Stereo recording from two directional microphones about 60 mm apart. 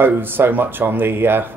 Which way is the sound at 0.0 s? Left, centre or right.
Right.